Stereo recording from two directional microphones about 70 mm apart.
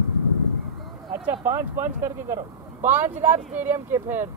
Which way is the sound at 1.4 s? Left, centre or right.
Right.